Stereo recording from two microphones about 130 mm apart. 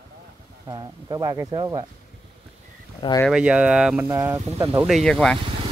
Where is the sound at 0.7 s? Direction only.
30° right (ahead or behind).